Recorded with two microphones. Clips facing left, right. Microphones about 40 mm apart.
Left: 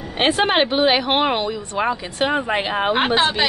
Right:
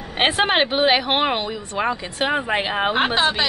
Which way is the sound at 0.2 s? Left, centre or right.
Centre.